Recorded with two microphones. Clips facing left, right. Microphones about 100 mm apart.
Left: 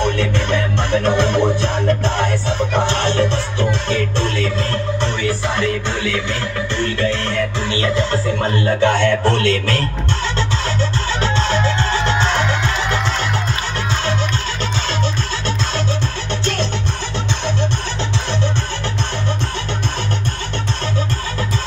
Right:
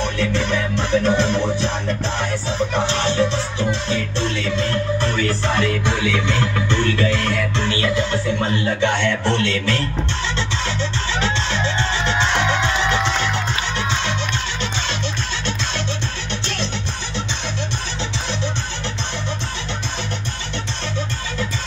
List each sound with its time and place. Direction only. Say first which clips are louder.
0.0 s music: left 3 dB; 55° left (ahead or behind)
7.8 s speech: left 4 dB; 40° left (ahead or behind)
11.1 s music: left 4 dB; 40° left (ahead or behind)